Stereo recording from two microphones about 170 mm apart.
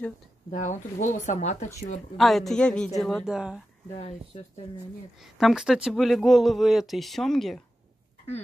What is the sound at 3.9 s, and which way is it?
Speech, 40° left (ahead or behind).